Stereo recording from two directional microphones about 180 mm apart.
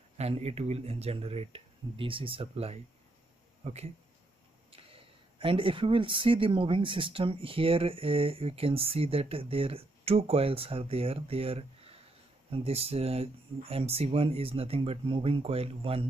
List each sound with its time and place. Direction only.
0.2 s speech: 35° right (ahead or behind)